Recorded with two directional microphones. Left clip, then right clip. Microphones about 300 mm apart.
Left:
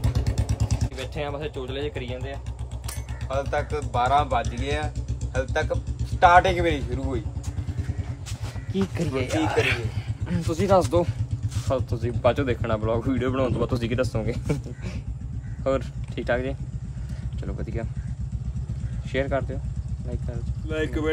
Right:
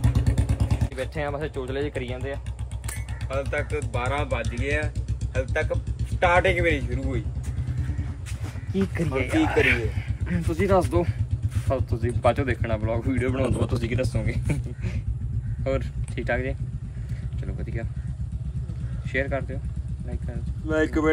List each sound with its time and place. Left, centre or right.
0.4 s vehicle: right
0.9 s speech: centre
3.3 s speech: centre
8.7 s speech: centre
19.1 s speech: centre
20.6 s speech: centre